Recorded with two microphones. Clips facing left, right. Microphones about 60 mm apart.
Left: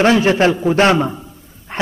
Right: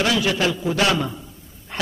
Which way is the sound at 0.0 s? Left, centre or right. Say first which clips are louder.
Left 8 dB; left.